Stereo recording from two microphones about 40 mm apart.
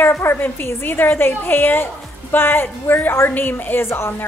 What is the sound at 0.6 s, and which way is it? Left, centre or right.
A woman's voice, left.